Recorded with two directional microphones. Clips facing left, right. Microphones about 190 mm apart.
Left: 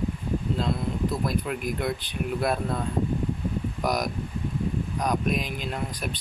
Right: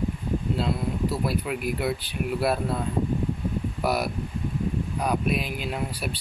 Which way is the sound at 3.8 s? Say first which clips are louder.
Right 1 dB; 5° right (ahead or behind).